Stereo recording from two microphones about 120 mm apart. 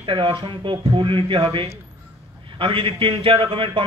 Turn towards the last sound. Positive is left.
turn(degrees=-50)  # may be behind; listen again after turning